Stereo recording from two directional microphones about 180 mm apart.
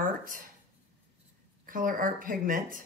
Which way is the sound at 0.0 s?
50° right (ahead or behind).